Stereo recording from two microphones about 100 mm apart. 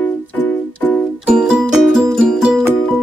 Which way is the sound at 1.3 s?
10° right (ahead or behind).